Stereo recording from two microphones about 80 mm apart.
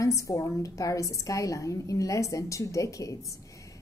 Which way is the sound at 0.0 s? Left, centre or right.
Left.